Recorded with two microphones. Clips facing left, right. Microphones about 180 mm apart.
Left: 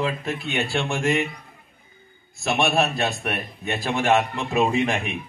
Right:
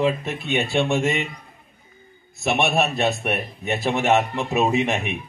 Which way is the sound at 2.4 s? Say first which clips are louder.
Right 1 dB; 20° right (ahead or behind).